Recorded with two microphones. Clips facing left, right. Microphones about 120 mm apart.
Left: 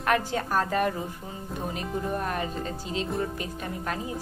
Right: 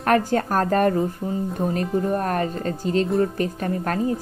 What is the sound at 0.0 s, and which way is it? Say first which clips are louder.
Speech: right 6 dB; 45° right (ahead or behind).